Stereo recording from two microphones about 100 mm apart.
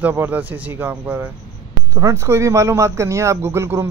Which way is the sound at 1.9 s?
25° right (ahead or behind).